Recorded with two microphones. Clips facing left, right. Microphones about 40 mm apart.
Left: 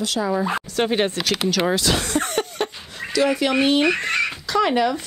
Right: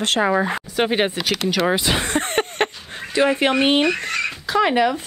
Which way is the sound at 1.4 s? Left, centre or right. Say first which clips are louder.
Right 1 dB; centre.